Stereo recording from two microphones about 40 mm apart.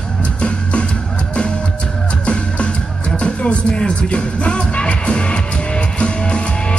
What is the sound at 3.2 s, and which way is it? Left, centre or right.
Music, left.